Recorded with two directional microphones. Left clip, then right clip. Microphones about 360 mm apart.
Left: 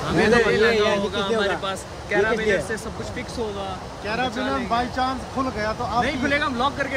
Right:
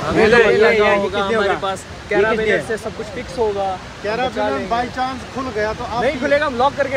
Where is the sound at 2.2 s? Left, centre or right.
Right.